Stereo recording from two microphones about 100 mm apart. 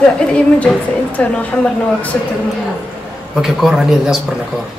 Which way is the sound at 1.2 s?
10° left (ahead or behind).